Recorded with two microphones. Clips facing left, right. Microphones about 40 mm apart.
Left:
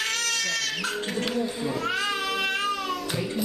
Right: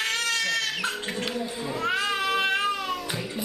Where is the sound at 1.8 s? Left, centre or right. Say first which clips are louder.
Right 4 dB; centre.